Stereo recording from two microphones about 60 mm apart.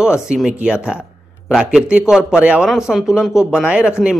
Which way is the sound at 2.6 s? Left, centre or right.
Centre.